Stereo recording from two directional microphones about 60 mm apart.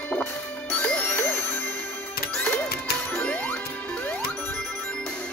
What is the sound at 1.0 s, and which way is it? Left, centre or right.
Music, left.